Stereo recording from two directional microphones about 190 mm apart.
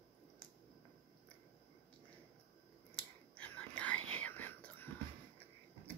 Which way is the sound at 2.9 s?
5° left (ahead or behind).